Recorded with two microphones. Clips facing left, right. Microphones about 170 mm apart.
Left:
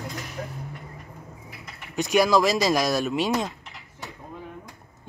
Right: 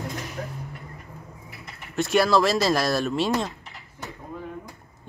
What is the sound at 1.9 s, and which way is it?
Speech, centre (ahead or behind).